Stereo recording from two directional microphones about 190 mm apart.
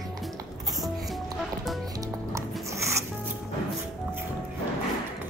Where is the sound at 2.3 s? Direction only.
15° right (ahead or behind).